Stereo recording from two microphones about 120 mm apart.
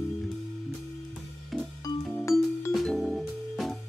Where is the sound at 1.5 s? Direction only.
Centre (ahead or behind).